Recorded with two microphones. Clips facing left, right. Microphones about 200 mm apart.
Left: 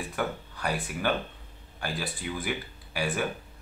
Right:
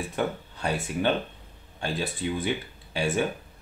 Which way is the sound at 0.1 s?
25° right (ahead or behind).